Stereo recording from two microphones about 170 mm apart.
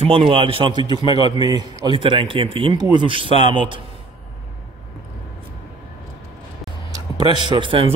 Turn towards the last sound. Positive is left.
turn(degrees=-30)  # may be behind; listen again after turning